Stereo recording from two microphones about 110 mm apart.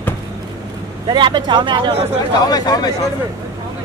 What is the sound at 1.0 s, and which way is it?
Speech, 45° right (ahead or behind).